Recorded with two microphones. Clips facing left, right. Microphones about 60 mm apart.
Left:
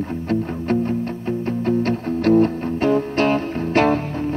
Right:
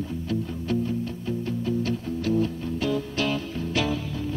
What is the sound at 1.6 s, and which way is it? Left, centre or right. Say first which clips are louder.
Music: left 8 dB; left.